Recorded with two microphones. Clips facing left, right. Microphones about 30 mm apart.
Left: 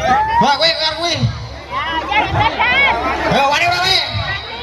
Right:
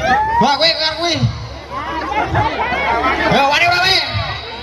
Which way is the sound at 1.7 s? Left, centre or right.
Left.